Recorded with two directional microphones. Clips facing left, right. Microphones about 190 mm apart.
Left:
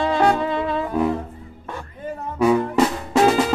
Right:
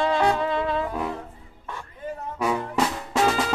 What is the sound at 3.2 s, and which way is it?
Drum, 20° left (ahead or behind).